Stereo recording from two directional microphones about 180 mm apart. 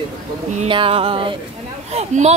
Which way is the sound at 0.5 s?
30° right (ahead or behind).